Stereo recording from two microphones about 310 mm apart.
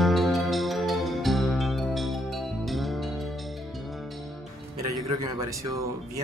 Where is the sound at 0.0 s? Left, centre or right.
Centre.